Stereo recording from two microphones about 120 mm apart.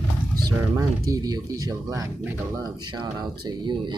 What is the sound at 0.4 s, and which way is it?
Speech, 30° right (ahead or behind).